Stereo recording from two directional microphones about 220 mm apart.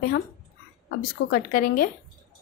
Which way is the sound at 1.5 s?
40° left (ahead or behind).